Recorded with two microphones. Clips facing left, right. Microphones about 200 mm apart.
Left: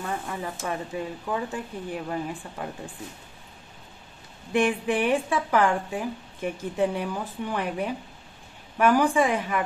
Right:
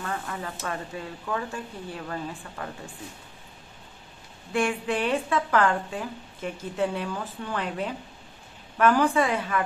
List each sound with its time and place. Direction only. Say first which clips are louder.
0.0 s a woman's voice: left 2 dB; 15° left (ahead or behind)
4.6 s a woman's voice: left 3 dB; 15° left (ahead or behind)